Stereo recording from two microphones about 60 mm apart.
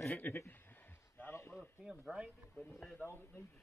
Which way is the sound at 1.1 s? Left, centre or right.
Left.